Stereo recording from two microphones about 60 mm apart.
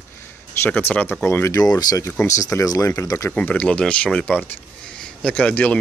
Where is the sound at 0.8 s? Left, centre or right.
Left.